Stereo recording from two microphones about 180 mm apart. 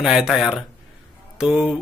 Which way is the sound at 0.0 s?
5° right (ahead or behind).